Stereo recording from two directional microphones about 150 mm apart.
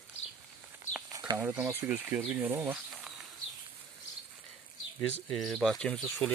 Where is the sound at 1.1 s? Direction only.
30° right (ahead or behind).